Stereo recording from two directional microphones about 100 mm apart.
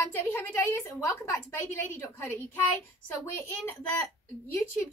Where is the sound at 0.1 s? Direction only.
20° left (ahead or behind).